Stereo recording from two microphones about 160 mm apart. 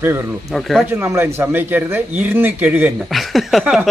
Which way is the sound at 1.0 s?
15° right (ahead or behind).